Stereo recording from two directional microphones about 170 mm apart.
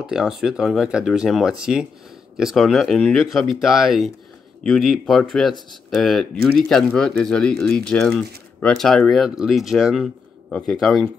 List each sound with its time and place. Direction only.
0.0 s speech: 5° right (ahead or behind)